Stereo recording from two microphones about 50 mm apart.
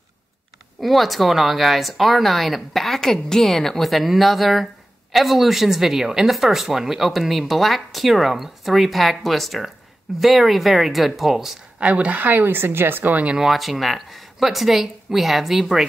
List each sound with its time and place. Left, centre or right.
0.7 s speech: centre
11.8 s a woman's voice: right
12.5 s speech: right
13.1 s speech: right
13.4 s speech: centre